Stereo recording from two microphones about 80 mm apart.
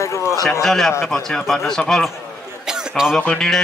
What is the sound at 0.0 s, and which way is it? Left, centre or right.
Speech, left.